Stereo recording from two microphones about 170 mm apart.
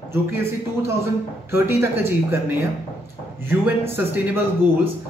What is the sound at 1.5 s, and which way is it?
A woman's voice, 15° right (ahead or behind).